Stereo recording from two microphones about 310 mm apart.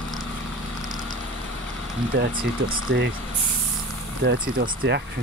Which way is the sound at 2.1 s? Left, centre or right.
Right.